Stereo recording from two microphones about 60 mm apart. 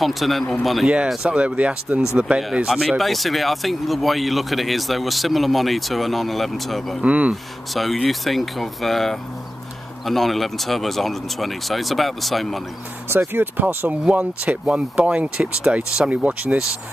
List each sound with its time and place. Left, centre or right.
0.0 s speech: centre
0.8 s speech: centre
2.7 s speech: centre
7.0 s speech: right
7.7 s speech: centre
13.1 s speech: right
14.0 s speech: right